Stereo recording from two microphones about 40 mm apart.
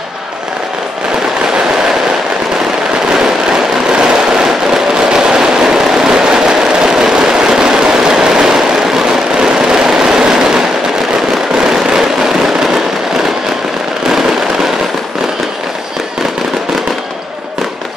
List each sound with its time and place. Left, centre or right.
3.1 s a sound: centre
9.5 s vehicle: centre
11.5 s fireworks: centre
14.0 s fireworks: centre